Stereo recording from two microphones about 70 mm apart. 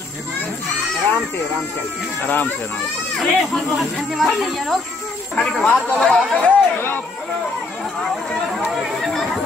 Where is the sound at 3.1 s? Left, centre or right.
Centre.